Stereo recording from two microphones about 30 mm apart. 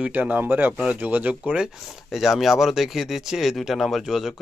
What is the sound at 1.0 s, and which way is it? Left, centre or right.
Speech, right.